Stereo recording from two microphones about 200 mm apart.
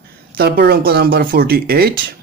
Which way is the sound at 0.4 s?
50° right (ahead or behind).